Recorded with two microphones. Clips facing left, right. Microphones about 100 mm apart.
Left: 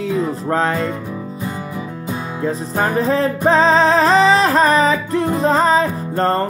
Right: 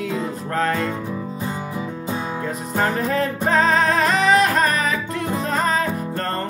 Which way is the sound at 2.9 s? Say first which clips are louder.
Left 5 dB; 30° left (ahead or behind).